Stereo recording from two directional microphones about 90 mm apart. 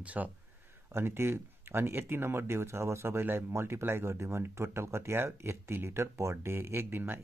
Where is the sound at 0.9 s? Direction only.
25° right (ahead or behind).